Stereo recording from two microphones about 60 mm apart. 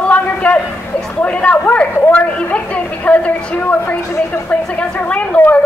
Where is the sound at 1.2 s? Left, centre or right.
Centre.